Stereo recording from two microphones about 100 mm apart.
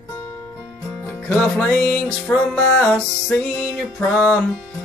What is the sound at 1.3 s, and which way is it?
Music, 15° left (ahead or behind).